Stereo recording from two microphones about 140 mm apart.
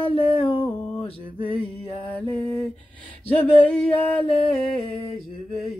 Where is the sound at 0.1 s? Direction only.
40° left (ahead or behind).